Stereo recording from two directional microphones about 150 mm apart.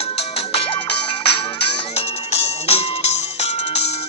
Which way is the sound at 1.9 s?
45° left (ahead or behind).